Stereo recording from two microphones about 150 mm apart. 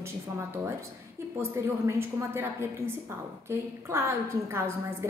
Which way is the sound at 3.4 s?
15° right (ahead or behind).